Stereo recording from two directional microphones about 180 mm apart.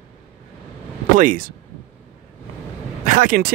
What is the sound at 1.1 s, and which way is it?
Speech, 50° right (ahead or behind).